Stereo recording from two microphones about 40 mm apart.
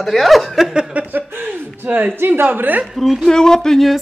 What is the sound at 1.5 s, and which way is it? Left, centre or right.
A woman's voice, right.